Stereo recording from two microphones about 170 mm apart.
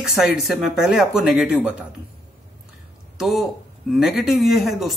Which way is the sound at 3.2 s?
Centre (ahead or behind).